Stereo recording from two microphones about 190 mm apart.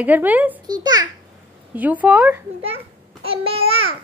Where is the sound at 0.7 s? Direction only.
20° right (ahead or behind).